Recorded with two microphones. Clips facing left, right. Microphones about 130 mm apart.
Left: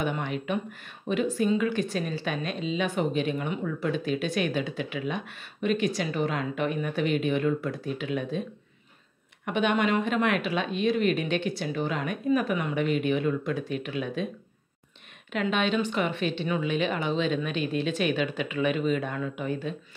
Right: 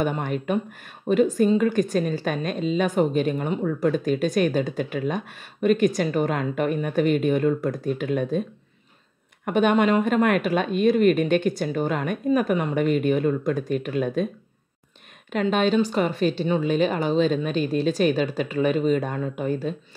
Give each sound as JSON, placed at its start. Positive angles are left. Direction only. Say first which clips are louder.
{"t": 0.0, "sound": "a woman's voice", "louder": "right 5 dB", "side_deg": -45}
{"t": 9.5, "sound": "a woman's voice", "louder": "right 6 dB", "side_deg": -45}
{"t": 15.4, "sound": "speech", "louder": "right 6 dB", "side_deg": -40}